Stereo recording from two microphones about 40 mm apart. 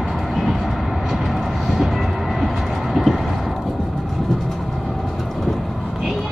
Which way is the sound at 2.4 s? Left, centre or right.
Centre.